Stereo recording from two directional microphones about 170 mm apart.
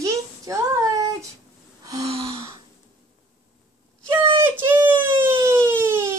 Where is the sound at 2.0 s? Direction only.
35° right (ahead or behind).